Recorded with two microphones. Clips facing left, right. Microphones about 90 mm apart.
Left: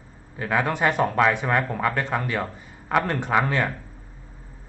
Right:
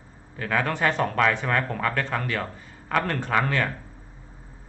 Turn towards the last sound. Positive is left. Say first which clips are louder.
# left 2 dB
turn(degrees=15)  # may be behind; listen again after turning